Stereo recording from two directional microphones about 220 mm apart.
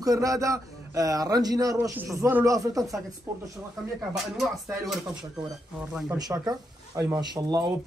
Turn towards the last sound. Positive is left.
turn(degrees=-15)  # may be behind; listen again after turning